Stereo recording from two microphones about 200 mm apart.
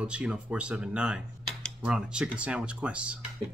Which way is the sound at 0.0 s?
5° right (ahead or behind).